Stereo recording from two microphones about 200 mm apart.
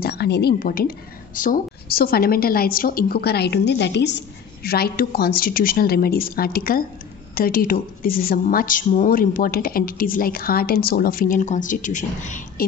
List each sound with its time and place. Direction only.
0.0 s a woman's voice: 55° left (ahead or behind)